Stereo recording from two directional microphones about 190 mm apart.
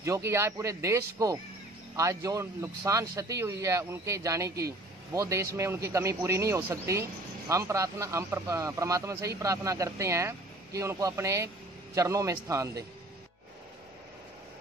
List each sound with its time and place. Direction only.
0.0 s speech: 15° right (ahead or behind)